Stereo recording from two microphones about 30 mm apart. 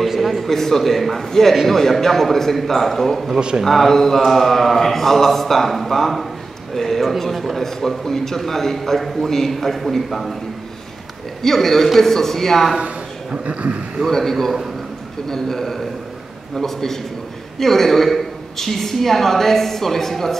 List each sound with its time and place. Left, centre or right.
0.0 s a man's voice: centre
3.3 s speech: right
3.6 s a man's voice: centre
11.4 s a man's voice: centre
13.3 s speech: right
14.0 s a man's voice: centre